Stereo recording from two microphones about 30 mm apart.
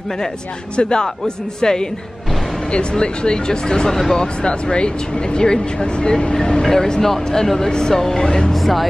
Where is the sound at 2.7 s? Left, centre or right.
Left.